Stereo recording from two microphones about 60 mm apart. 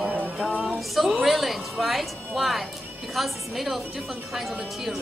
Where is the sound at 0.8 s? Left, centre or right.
Centre.